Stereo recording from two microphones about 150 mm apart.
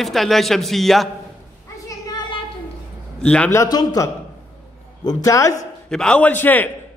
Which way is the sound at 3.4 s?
20° left (ahead or behind).